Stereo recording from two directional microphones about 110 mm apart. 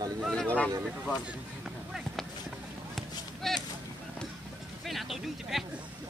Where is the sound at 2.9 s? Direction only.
Centre (ahead or behind).